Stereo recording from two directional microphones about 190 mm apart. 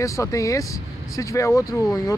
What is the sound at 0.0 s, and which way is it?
Speech, 15° left (ahead or behind).